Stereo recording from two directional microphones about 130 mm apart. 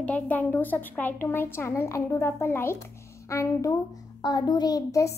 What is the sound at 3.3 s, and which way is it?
Child singing, 25° left (ahead or behind).